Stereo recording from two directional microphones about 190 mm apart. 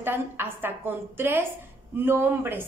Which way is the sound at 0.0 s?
10° right (ahead or behind).